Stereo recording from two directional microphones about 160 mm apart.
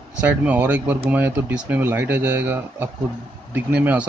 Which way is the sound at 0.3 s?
10° right (ahead or behind).